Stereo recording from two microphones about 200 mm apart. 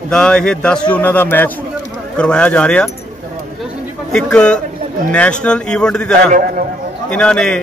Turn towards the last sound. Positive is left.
turn(degrees=5)  # may be behind; listen again after turning